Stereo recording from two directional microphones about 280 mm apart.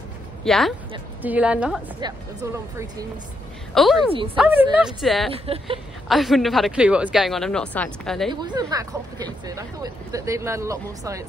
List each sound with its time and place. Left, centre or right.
0.4 s speech: centre
5.3 s speech: centre
6.0 s speech: centre
8.3 s speech: centre